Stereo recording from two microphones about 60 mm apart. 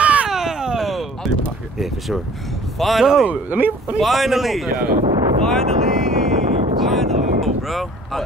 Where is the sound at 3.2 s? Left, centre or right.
Right.